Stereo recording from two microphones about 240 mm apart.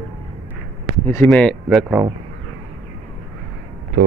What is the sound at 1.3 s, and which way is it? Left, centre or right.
Speech, centre.